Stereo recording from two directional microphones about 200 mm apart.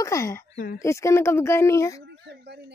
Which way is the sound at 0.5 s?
45° left (ahead or behind).